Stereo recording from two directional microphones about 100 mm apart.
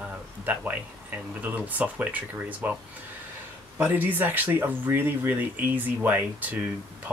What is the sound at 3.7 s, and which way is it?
Speech, 20° right (ahead or behind).